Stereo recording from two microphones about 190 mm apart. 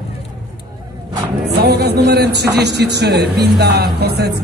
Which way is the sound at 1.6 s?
60° right (ahead or behind).